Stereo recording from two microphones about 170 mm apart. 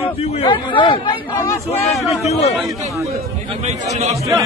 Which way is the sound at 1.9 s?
Centre (ahead or behind).